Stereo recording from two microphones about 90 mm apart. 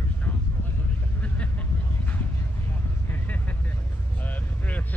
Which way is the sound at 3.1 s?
20° left (ahead or behind).